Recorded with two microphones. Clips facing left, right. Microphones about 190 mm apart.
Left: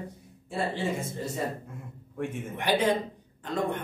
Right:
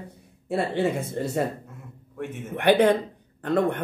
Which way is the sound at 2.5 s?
60° right (ahead or behind).